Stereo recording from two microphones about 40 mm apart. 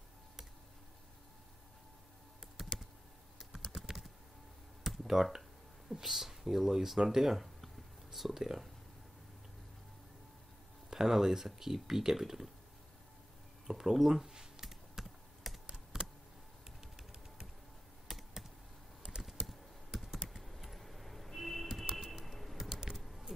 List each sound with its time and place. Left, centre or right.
2.5 s typing: centre
4.8 s a sound: centre
5.9 s speech: centre
10.9 s speech: centre
13.7 s computer keyboard: centre
15.7 s computer keyboard: centre
18.0 s computer keyboard: centre
20.1 s typing: centre
21.7 s music: centre
22.3 s typing: centre
22.6 s typing: centre
22.9 s typing: centre